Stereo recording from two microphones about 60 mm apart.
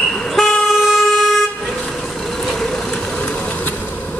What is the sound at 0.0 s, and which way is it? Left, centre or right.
Vehicle, centre.